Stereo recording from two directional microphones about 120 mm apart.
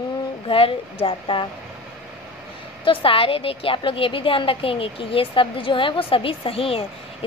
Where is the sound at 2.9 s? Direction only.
50° left (ahead or behind).